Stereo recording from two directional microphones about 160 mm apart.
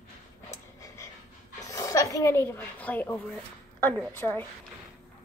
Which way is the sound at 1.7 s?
20° left (ahead or behind).